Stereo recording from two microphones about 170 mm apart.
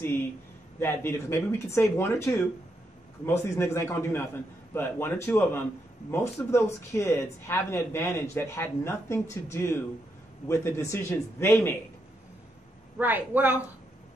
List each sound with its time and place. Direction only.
0.7 s speech: 15° left (ahead or behind)
3.4 s speech: 15° left (ahead or behind)
12.9 s a woman's voice: 10° right (ahead or behind)